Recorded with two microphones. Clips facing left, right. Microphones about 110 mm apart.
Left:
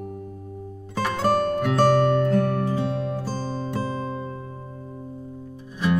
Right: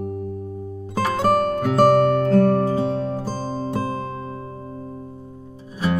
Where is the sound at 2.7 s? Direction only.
35° right (ahead or behind).